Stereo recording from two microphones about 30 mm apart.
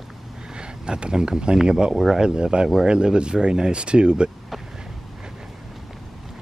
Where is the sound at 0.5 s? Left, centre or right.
Right.